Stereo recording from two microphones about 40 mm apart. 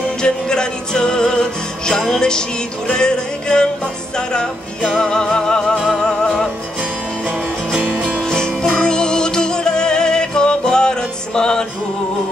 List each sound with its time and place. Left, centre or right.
0.2 s music: centre
6.8 s music: right
8.1 s music: centre